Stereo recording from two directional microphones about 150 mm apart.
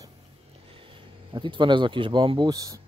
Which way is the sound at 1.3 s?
30° right (ahead or behind).